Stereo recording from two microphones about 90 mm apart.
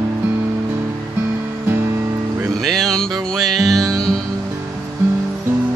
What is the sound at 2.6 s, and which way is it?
Music, 5° left (ahead or behind).